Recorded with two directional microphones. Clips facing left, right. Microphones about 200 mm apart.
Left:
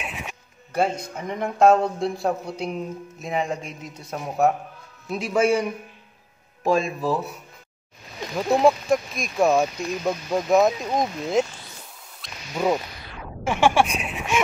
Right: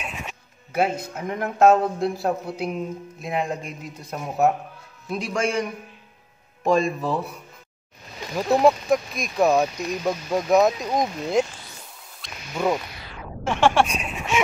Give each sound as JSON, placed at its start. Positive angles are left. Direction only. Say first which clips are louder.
{"t": 0.0, "sound": "music", "louder": "even", "side_deg": 5}
{"t": 0.7, "sound": "speech", "louder": "even", "side_deg": -5}
{"t": 8.4, "sound": "speech", "louder": "even", "side_deg": 0}
{"t": 12.2, "sound": "a sound", "louder": "even", "side_deg": 5}